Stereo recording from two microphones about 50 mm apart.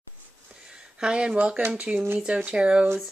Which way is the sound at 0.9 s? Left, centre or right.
Centre.